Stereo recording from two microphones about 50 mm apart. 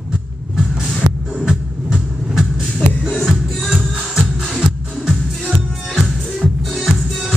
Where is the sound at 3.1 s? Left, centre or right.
Centre.